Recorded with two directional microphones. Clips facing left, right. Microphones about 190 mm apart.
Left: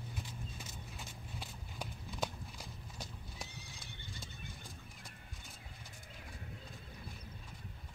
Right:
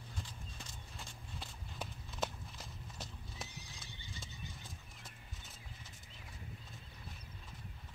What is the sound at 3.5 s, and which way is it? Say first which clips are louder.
Horse: left 1 dB; 60° left (ahead or behind).